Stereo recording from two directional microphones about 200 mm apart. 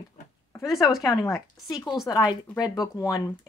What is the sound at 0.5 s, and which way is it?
Speech, 15° left (ahead or behind).